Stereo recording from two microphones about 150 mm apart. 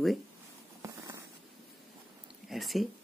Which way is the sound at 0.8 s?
20° right (ahead or behind).